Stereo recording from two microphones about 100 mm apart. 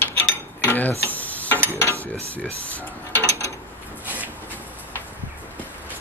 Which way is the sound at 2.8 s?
25° left (ahead or behind).